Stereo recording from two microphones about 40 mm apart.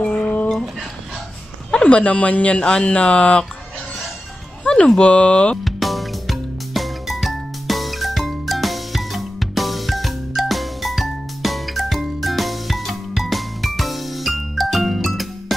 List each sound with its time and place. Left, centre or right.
0.1 s a sound: left
1.7 s speech: left
4.9 s speech: left
5.6 s music: centre